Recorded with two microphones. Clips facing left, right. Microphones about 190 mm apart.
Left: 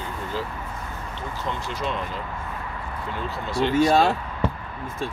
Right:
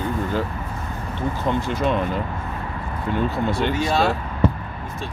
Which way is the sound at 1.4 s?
55° right (ahead or behind).